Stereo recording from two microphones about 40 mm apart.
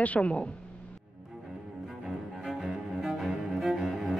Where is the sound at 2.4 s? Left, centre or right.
Centre.